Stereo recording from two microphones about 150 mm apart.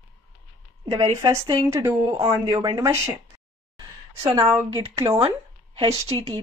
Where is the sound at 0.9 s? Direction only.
25° right (ahead or behind).